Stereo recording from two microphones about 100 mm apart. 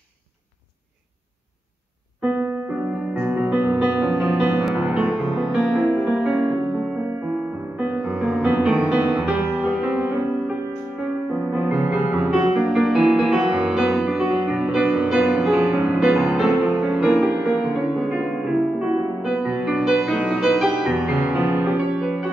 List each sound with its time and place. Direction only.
3.2 s music: 15° right (ahead or behind)
7.8 s music: 10° right (ahead or behind)
11.5 s music: 15° right (ahead or behind)